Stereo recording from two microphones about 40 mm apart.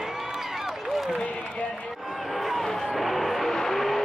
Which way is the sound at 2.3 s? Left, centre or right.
Centre.